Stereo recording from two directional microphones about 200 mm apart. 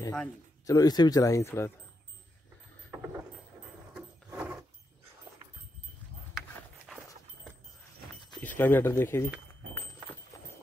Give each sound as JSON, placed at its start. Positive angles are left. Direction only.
{"t": 0.0, "sound": "speech", "side_deg": 10}
{"t": 3.9, "sound": "a sound", "side_deg": -10}
{"t": 8.4, "sound": "speech", "side_deg": 10}